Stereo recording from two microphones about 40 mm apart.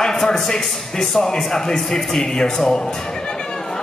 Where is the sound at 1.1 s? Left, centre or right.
Centre.